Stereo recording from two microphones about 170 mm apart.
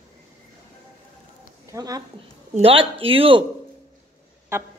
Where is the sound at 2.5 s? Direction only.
35° right (ahead or behind).